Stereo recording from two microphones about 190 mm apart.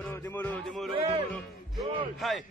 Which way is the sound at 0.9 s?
30° right (ahead or behind).